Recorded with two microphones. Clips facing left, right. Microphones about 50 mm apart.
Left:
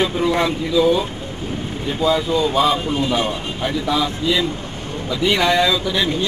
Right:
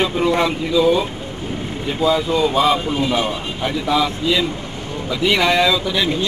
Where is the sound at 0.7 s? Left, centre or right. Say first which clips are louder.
Right 1 dB; centre.